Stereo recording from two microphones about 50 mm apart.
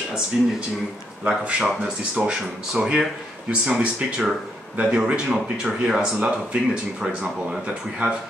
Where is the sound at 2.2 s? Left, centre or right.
Centre.